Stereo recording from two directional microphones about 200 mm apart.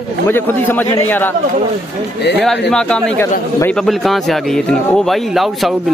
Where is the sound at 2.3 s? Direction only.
5° left (ahead or behind).